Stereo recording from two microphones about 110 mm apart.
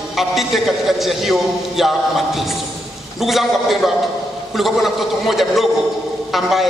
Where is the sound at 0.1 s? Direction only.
Centre (ahead or behind).